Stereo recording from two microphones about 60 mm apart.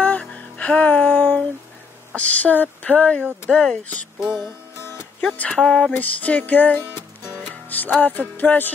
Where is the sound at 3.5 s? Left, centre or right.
Centre.